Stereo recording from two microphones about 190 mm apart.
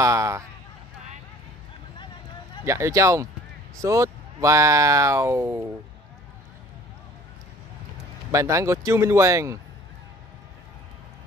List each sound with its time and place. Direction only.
0.0 s speech: 15° right (ahead or behind)
2.6 s speech: 15° right (ahead or behind)
8.3 s speech: 15° right (ahead or behind)